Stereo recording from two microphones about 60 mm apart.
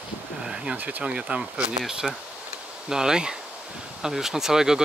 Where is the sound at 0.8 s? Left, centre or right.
Right.